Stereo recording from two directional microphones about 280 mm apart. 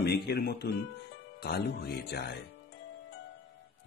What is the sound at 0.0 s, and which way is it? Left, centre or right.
Speech, left.